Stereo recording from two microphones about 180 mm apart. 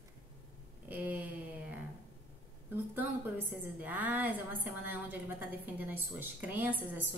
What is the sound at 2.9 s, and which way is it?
A woman's voice, 10° right (ahead or behind).